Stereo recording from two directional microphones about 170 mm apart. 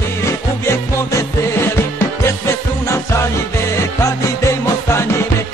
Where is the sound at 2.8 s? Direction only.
15° left (ahead or behind).